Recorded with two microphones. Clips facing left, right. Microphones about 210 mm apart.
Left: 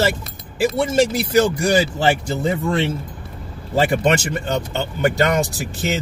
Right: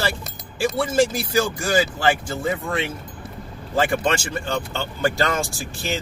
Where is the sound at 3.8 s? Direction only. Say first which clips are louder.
Left 4 dB; 20° left (ahead or behind).